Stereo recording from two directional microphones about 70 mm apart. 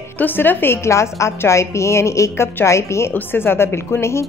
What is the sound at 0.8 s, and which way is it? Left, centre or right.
A woman's voice, left.